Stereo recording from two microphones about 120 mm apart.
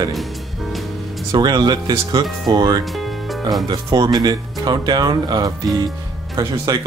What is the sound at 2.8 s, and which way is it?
Music, centre (ahead or behind).